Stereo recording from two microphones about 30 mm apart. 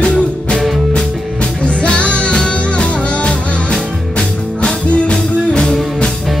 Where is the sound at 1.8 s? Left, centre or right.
Left.